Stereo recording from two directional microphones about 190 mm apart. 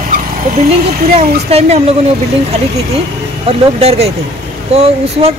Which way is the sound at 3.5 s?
30° right (ahead or behind).